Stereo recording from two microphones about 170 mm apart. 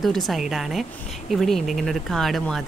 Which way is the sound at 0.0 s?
Centre (ahead or behind).